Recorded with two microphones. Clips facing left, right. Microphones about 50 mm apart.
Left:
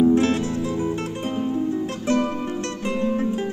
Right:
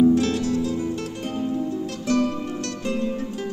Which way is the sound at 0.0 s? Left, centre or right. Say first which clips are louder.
Left 1 dB; left.